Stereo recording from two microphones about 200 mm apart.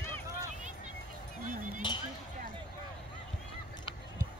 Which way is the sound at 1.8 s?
25° left (ahead or behind).